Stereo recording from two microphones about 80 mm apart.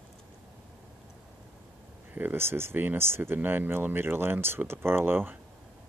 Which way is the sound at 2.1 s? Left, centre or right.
Right.